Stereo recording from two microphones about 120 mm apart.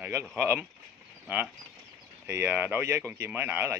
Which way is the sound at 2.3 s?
20° right (ahead or behind).